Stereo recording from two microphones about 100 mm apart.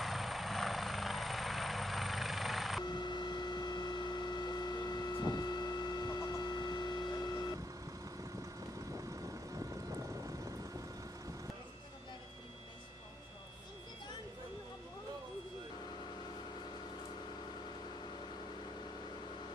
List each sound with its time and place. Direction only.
0.0 s helicopter: centre (ahead or behind)
2.8 s a sound: 50° left (ahead or behind)
8.9 s vehicle: 35° right (ahead or behind)